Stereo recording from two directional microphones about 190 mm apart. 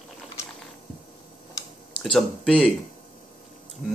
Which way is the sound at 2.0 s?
5° left (ahead or behind).